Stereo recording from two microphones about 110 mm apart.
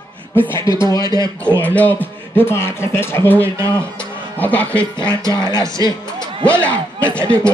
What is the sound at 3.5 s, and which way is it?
Speech, 25° right (ahead or behind).